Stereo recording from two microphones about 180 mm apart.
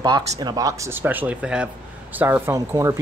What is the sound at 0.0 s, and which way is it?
Speech, 25° right (ahead or behind).